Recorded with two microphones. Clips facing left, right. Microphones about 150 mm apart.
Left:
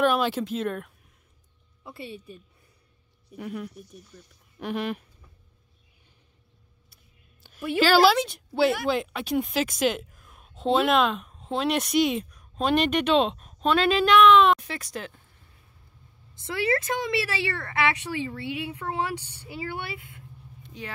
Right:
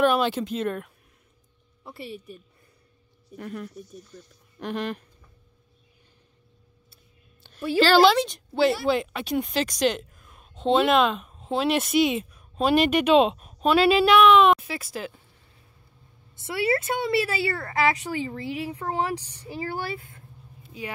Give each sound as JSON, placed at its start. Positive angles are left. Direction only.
{"t": 0.0, "sound": "speech", "side_deg": 0}
{"t": 3.3, "sound": "speech", "side_deg": 5}
{"t": 7.4, "sound": "a woman's voice", "side_deg": 5}
{"t": 16.4, "sound": "speech", "side_deg": -30}
{"t": 20.6, "sound": "vehicle", "side_deg": -5}